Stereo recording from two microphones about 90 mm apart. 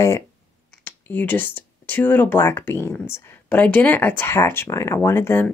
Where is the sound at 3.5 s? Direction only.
15° left (ahead or behind).